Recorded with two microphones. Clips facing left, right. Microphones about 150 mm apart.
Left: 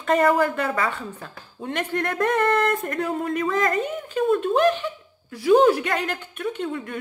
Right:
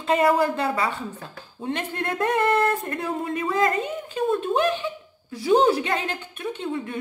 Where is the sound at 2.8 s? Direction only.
30° right (ahead or behind).